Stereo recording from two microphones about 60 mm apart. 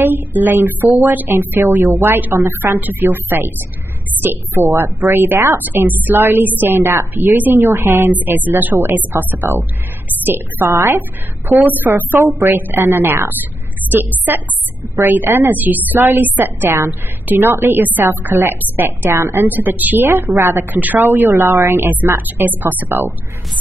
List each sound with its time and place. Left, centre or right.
0.0 s a woman's voice: right
7.5 s speech: right
8.1 s a woman's voice: right
10.7 s a woman's voice: right
12.3 s speech: right
12.5 s a woman's voice: right
19.4 s a woman's voice: right
20.1 s speech: right
20.7 s a woman's voice: right